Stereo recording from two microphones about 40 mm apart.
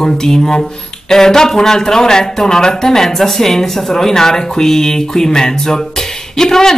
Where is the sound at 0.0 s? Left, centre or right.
Centre.